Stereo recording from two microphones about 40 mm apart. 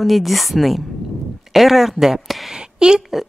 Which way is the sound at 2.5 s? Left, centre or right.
Centre.